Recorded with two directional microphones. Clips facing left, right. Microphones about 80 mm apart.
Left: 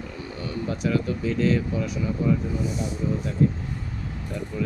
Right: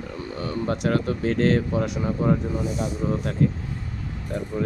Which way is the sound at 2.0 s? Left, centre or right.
Right.